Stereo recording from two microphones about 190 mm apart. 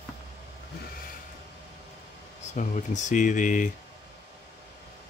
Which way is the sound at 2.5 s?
40° left (ahead or behind).